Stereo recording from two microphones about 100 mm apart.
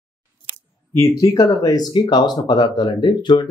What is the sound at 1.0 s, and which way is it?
Speech, 30° left (ahead or behind).